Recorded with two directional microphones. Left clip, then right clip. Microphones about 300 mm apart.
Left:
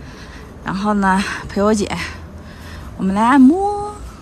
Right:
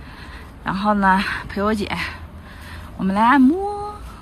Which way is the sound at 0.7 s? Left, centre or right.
Centre.